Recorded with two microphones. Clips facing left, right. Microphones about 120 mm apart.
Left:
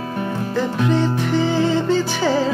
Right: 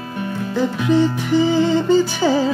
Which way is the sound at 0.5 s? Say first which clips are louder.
Right 3 dB; 5° right (ahead or behind).